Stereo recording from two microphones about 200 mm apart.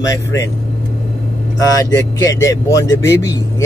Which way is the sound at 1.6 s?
15° left (ahead or behind).